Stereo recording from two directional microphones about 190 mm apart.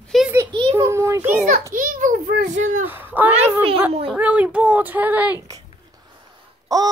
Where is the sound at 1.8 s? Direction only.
45° right (ahead or behind).